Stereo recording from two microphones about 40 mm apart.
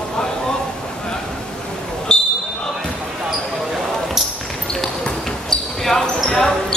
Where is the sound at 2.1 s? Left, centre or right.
Left.